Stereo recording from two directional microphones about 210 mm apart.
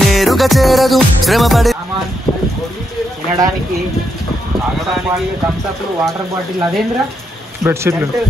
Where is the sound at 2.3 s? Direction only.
20° left (ahead or behind).